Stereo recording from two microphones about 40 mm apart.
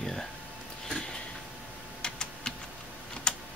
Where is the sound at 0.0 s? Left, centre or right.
Centre.